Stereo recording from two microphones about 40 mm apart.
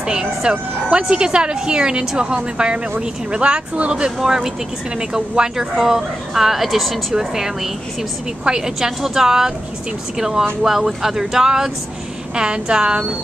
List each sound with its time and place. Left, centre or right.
0.0 s a woman's voice: right
4.2 s a woman's voice: centre
7.2 s a woman's voice: centre